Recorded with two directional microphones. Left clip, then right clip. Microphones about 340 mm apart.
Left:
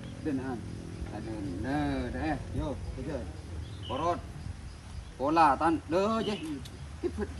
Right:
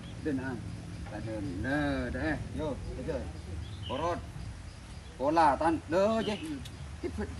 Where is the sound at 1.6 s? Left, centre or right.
Centre.